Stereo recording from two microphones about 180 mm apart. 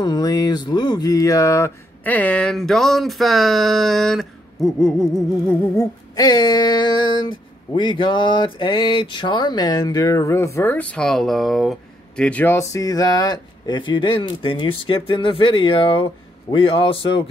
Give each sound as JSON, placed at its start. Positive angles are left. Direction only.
{"t": 0.0, "sound": "speech", "side_deg": 20}
{"t": 5.5, "sound": "speech", "side_deg": 20}